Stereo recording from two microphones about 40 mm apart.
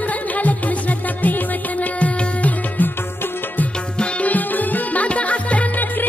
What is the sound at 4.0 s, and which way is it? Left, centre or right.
Music, left.